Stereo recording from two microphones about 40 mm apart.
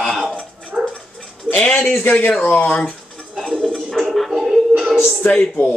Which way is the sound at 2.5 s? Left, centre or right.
Left.